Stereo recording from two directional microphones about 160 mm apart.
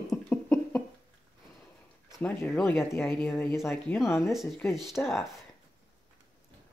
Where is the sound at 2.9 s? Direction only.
15° left (ahead or behind).